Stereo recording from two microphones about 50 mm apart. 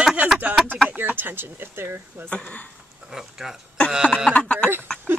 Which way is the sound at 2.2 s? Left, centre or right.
Left.